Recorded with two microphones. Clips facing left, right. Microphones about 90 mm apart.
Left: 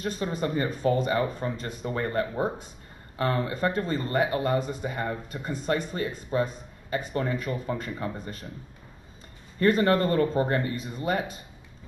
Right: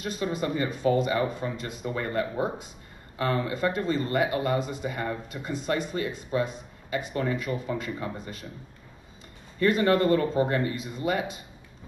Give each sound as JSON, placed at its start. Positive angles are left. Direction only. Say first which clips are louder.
{"t": 0.0, "sound": "speech", "louder": "even", "side_deg": 40}
{"t": 9.6, "sound": "speech", "louder": "even", "side_deg": 40}